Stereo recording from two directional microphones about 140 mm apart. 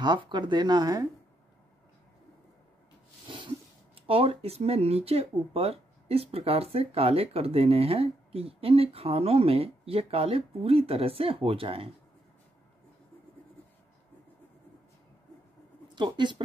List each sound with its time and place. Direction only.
0.0 s speech: 35° right (ahead or behind)
3.9 s speech: 45° right (ahead or behind)
15.9 s speech: 35° right (ahead or behind)